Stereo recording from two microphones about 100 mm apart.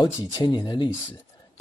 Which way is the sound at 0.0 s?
45° left (ahead or behind).